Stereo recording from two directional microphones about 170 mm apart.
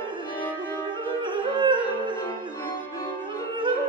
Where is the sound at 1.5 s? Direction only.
25° right (ahead or behind).